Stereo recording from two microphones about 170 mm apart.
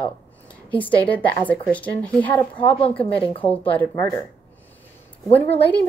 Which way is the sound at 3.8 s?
10° left (ahead or behind).